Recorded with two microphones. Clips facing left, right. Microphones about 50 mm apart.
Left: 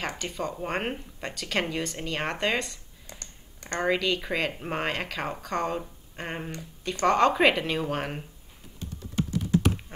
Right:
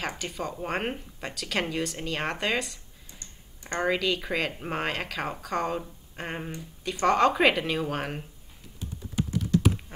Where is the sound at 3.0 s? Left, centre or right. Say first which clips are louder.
Left 6 dB; left.